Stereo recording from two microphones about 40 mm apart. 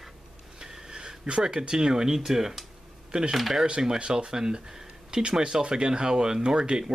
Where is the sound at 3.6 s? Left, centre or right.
Right.